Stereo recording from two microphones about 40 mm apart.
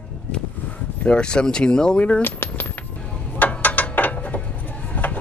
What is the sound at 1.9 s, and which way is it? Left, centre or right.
Speech, left.